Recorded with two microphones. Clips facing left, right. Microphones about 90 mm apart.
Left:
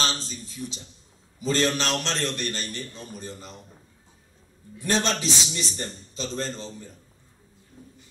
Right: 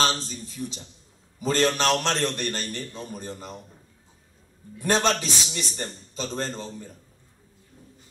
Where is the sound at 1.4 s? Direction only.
50° right (ahead or behind).